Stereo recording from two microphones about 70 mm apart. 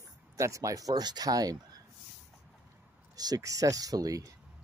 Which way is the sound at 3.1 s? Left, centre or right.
Right.